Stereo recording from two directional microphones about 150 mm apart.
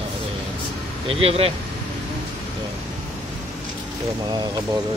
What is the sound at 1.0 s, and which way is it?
Speech, 40° right (ahead or behind).